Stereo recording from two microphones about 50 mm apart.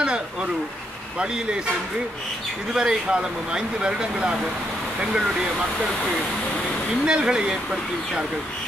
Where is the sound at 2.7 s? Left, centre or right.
Centre.